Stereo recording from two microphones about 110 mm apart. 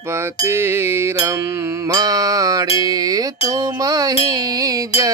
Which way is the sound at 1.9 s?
35° right (ahead or behind).